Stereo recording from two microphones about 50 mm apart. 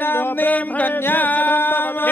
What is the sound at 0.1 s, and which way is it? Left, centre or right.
Music, left.